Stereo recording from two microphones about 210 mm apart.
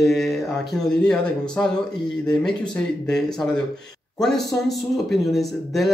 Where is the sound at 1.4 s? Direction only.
20° left (ahead or behind).